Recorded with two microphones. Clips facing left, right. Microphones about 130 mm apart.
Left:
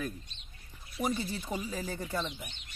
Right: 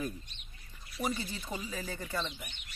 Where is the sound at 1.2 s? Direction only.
10° left (ahead or behind).